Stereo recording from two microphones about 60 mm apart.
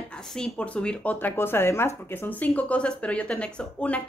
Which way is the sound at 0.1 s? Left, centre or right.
Centre.